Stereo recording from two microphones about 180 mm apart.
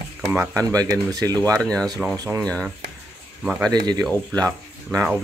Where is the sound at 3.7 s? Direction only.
20° right (ahead or behind).